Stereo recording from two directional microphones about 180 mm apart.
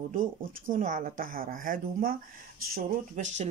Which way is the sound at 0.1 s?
50° right (ahead or behind).